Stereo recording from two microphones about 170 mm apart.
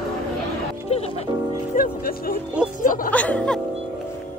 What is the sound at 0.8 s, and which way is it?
Music, 35° left (ahead or behind).